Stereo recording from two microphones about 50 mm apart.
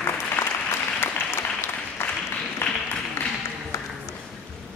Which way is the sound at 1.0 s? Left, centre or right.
Left.